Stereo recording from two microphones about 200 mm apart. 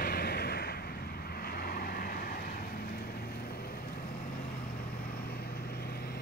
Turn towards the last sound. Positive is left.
turn(degrees=50)  # may be behind; listen again after turning